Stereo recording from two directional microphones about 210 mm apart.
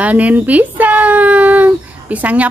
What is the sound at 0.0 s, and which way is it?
A woman's voice, 5° right (ahead or behind).